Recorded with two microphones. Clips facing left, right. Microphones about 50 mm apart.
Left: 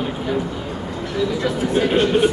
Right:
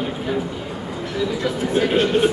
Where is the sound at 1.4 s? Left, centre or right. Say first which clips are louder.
Even; centre.